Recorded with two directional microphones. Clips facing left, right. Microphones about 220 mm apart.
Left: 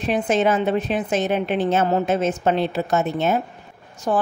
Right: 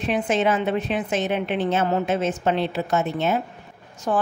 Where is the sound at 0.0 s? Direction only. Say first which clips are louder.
Left 2 dB; 40° left (ahead or behind).